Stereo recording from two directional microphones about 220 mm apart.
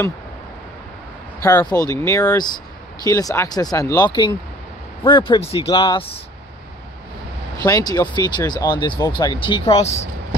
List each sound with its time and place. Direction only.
1.4 s speech: 15° left (ahead or behind)
7.6 s speech: 15° left (ahead or behind)